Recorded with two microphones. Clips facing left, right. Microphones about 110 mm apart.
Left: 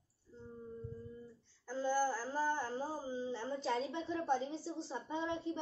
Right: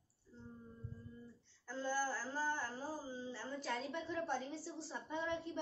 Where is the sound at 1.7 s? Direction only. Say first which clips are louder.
Left 5 dB; 10° left (ahead or behind).